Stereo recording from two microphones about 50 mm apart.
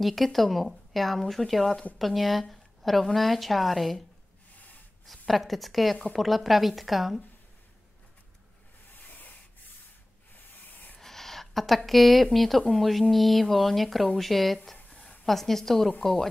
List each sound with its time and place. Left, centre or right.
0.0 s a woman's voice: centre
5.0 s speech: centre
10.7 s a sound: left
11.0 s speech: centre